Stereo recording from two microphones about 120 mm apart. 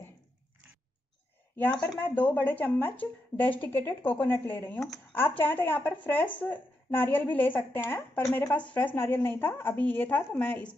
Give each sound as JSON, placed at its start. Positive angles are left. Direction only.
{"t": 1.6, "sound": "a woman's voice", "side_deg": 15}
{"t": 4.7, "sound": "speech", "side_deg": 5}
{"t": 5.1, "sound": "a woman's voice", "side_deg": 15}